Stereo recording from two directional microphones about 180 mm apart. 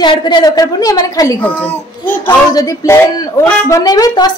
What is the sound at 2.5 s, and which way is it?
A woman's voice, 20° left (ahead or behind).